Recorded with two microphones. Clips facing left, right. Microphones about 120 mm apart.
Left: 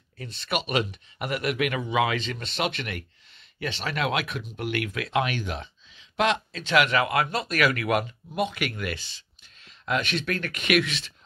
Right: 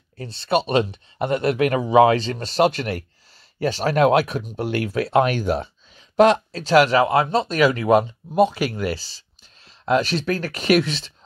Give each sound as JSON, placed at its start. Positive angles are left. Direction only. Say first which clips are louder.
{"t": 0.2, "sound": "speech", "louder": "right 9 dB", "side_deg": -30}